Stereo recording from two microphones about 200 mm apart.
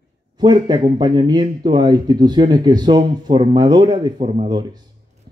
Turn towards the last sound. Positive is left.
turn(degrees=-20)  # may be behind; listen again after turning